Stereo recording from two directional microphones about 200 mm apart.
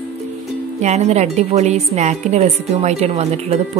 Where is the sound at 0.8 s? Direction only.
35° right (ahead or behind).